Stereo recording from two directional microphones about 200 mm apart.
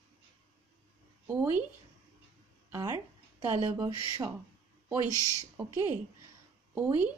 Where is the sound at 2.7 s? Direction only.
15° right (ahead or behind).